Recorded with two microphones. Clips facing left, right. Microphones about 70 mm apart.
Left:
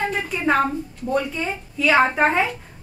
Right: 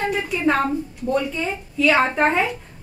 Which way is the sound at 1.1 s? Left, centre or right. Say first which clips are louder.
Right 1 dB; centre.